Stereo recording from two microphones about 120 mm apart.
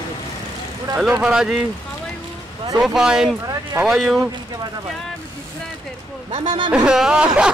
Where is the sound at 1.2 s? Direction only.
5° right (ahead or behind).